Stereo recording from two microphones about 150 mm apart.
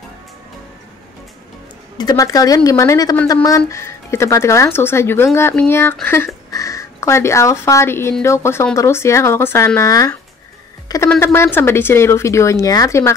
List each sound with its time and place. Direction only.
2.0 s speech: 25° left (ahead or behind)